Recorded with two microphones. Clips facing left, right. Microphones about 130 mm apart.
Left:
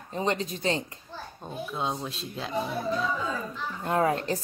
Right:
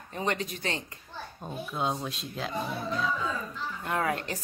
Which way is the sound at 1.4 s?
Centre (ahead or behind).